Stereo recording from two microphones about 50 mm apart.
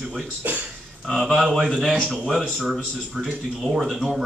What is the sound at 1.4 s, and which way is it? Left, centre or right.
Speech, centre.